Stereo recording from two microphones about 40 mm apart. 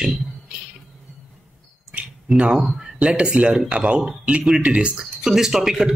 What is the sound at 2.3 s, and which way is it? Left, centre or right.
Speech, centre.